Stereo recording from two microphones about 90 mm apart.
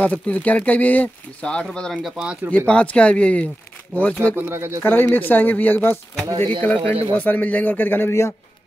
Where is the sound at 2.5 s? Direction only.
15° left (ahead or behind).